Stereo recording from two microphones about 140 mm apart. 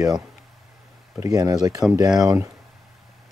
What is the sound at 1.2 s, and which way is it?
Speech, 30° right (ahead or behind).